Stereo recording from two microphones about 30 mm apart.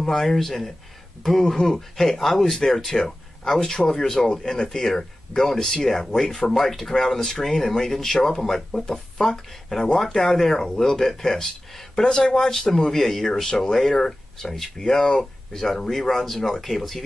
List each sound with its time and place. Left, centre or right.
0.0 s speech: centre
12.9 s speech: centre